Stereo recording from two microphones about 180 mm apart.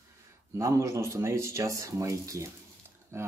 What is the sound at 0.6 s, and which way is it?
Speech, 15° right (ahead or behind).